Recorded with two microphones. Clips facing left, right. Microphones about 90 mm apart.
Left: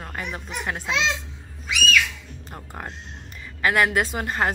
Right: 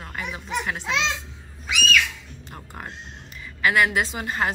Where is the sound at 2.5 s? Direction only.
35° left (ahead or behind).